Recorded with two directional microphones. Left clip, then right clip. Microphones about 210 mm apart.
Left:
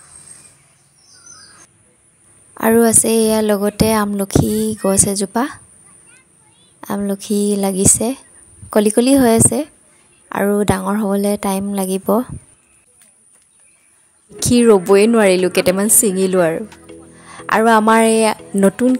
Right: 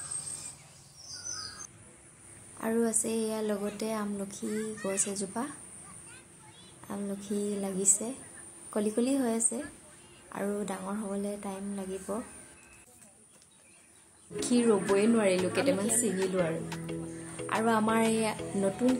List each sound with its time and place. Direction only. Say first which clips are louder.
2.5 s speech: left 18 dB; 50° left (ahead or behind)
6.8 s speech: left 17 dB; 50° left (ahead or behind)
14.4 s speech: left 15 dB; 50° left (ahead or behind)
16.6 s music: left 3 dB; centre (ahead or behind)
17.5 s speech: left 17 dB; 50° left (ahead or behind)